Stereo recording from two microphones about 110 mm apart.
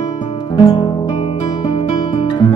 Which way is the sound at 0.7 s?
45° left (ahead or behind).